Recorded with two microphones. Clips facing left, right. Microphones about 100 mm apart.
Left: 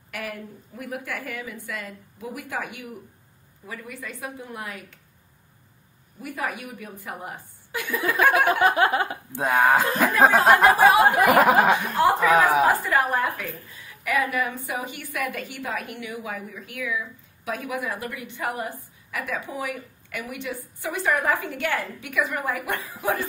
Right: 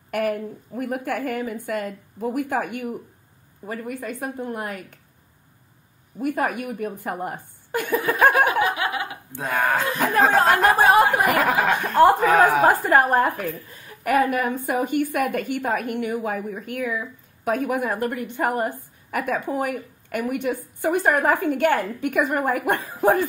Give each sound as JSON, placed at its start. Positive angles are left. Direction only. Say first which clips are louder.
{"t": 0.1, "sound": "a woman's voice", "louder": "right 10 dB", "side_deg": -50}
{"t": 6.2, "sound": "a woman's voice", "louder": "right 7 dB", "side_deg": -50}
{"t": 8.5, "sound": "speech", "louder": "left 3 dB", "side_deg": 45}
{"t": 9.6, "sound": "a sound", "louder": "left 3 dB", "side_deg": 15}
{"t": 9.8, "sound": "speech", "louder": "left 1 dB", "side_deg": 40}
{"t": 10.2, "sound": "a sound", "louder": "left 2 dB", "side_deg": 15}
{"t": 10.8, "sound": "a woman's voice", "louder": "even", "side_deg": -50}